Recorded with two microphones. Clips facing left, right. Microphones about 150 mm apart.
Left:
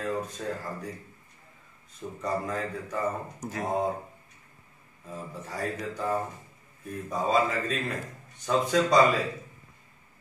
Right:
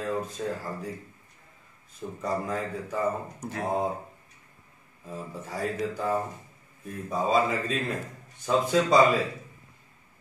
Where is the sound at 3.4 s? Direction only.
Centre (ahead or behind).